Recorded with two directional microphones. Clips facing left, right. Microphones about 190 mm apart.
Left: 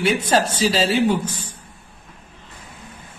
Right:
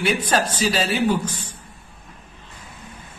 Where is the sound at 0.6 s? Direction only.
25° left (ahead or behind).